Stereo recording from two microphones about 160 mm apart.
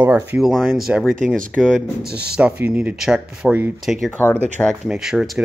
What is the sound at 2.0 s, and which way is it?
Speech, 85° right.